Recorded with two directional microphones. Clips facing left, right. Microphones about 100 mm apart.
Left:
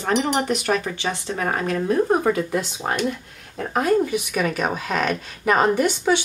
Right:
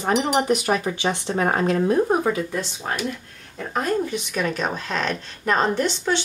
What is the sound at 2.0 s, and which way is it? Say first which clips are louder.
Speech: left 2 dB; centre (ahead or behind).